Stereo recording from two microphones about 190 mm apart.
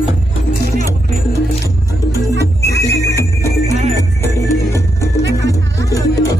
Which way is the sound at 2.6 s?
15° left (ahead or behind).